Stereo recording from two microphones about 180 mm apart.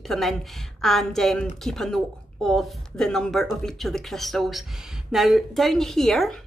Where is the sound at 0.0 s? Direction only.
Centre (ahead or behind).